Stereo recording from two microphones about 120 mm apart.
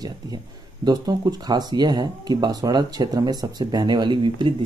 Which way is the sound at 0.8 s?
35° right (ahead or behind).